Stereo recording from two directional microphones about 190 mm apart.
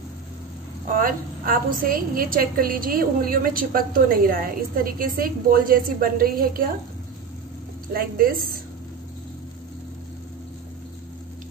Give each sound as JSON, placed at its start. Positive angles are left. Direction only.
{"t": 0.9, "sound": "a woman's voice", "side_deg": -50}
{"t": 7.9, "sound": "a woman's voice", "side_deg": -50}